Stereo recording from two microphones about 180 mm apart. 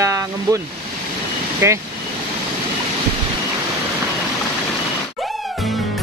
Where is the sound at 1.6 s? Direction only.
15° right (ahead or behind).